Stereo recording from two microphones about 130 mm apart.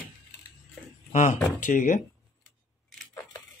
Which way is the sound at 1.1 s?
70° left (ahead or behind).